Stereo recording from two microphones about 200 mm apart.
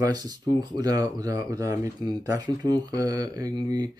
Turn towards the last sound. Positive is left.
turn(degrees=-20)  # may be behind; listen again after turning